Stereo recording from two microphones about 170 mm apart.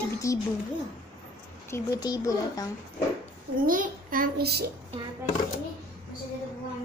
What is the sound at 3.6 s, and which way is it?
A child's voice, 55° right (ahead or behind).